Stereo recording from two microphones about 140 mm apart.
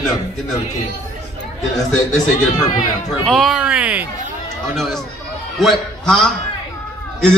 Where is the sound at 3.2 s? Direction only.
Centre (ahead or behind).